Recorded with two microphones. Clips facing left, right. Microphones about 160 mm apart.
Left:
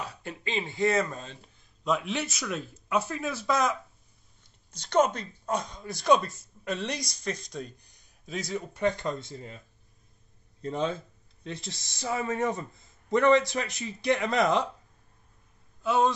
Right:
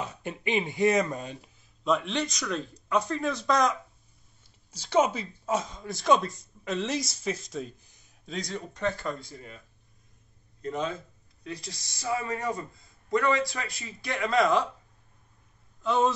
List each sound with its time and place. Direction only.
0.0 s speech: 20° right (ahead or behind)
1.9 s speech: 5° left (ahead or behind)
4.6 s speech: 10° right (ahead or behind)
8.8 s speech: 20° left (ahead or behind)
10.6 s speech: 30° left (ahead or behind)
15.8 s speech: 5° left (ahead or behind)